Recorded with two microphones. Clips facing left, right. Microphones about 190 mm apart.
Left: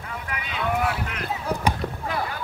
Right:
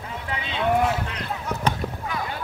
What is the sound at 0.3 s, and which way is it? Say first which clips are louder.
Boat: right 4 dB; 30° right (ahead or behind).